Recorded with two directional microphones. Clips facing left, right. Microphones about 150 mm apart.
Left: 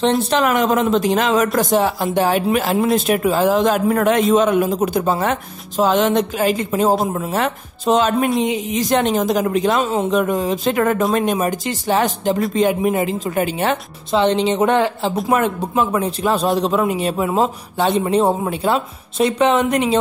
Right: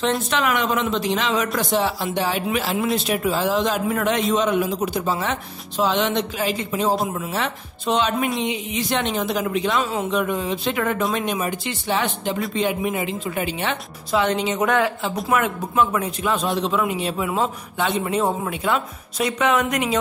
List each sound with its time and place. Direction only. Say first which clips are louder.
0.3 s speech: left 5 dB; 40° left (ahead or behind)
14.1 s a woman's voice: left 5 dB; 30° left (ahead or behind)